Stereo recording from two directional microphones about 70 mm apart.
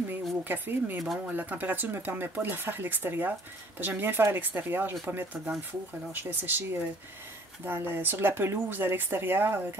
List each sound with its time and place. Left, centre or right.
0.4 s speech: right